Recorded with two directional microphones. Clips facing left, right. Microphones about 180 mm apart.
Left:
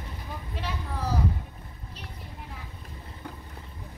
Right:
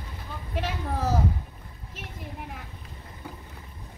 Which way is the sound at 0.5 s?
50° right (ahead or behind).